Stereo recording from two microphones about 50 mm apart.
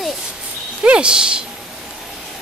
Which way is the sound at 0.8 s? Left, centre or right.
Centre.